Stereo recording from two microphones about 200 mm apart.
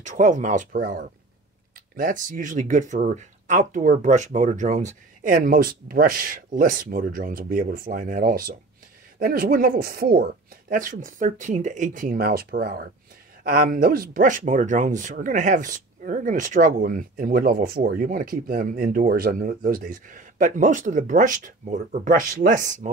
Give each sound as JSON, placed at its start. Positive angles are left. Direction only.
{"t": 0.0, "sound": "speech", "side_deg": -35}